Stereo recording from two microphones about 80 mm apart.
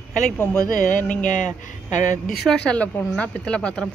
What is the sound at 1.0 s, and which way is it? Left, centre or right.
Speech, centre.